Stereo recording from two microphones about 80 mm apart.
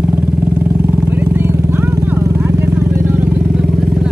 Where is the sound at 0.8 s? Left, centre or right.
Right.